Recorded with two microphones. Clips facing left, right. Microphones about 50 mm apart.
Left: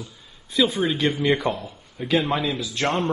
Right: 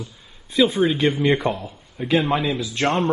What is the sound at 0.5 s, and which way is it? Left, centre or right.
Speech, right.